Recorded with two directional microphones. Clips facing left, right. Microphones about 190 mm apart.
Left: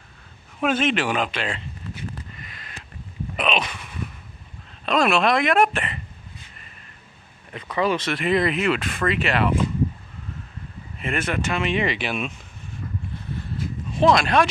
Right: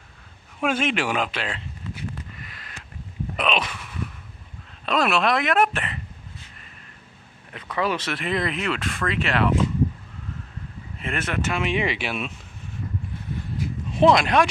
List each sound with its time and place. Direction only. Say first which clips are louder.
0.6 s speech: left 2 dB; 10° right (ahead or behind)
3.3 s a sound: left 1 dB; centre (ahead or behind)
4.8 s speech: left 2 dB; 5° right (ahead or behind)
7.5 s speech: left 3 dB; centre (ahead or behind)
11.0 s speech: left 2 dB; centre (ahead or behind)
13.9 s speech: right 1 dB; 20° right (ahead or behind)